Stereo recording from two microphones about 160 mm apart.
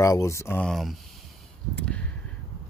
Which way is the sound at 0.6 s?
Centre (ahead or behind).